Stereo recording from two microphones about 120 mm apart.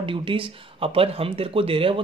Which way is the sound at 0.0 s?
45° right (ahead or behind).